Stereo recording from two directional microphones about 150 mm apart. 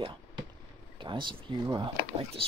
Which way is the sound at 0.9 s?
35° right (ahead or behind).